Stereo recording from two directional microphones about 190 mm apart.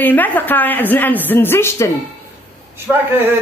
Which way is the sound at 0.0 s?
10° left (ahead or behind).